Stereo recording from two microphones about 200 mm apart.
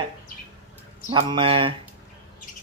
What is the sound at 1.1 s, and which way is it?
Speech, 25° right (ahead or behind).